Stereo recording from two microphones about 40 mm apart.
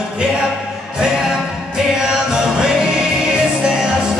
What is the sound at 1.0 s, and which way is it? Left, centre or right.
Music, centre.